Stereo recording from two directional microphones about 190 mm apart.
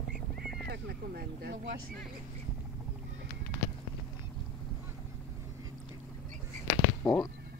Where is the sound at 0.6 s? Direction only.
55° right (ahead or behind).